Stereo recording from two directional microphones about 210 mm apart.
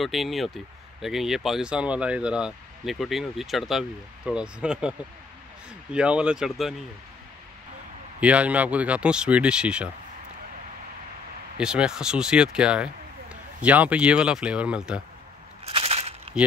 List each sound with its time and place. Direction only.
0.0 s speech: centre (ahead or behind)
5.9 s speech: 5° right (ahead or behind)
8.2 s speech: 5° right (ahead or behind)
11.5 s speech: 5° right (ahead or behind)
15.6 s a sound: 25° right (ahead or behind)